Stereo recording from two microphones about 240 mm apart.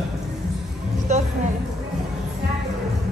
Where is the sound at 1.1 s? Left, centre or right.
Right.